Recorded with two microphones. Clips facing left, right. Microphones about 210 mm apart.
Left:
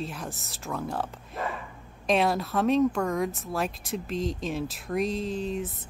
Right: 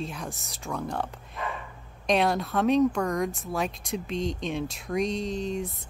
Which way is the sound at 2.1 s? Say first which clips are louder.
Even; centre (ahead or behind).